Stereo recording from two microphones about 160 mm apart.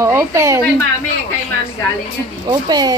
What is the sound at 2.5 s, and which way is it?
Speech, 25° right (ahead or behind).